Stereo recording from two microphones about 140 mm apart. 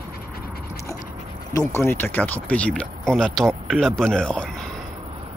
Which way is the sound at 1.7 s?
20° left (ahead or behind).